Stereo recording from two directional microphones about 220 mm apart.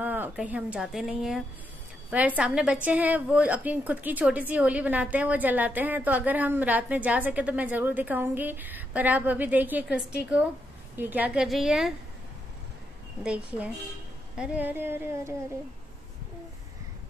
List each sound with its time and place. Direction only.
0.0 s a woman's voice: 10° right (ahead or behind)
13.2 s a woman's voice: 5° right (ahead or behind)